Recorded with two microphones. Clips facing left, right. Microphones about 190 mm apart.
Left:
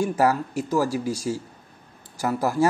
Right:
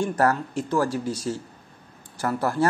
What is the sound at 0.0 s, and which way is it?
Speech, 10° left (ahead or behind).